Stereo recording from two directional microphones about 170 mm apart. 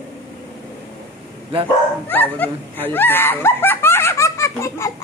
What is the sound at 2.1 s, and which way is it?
Speech, 10° left (ahead or behind).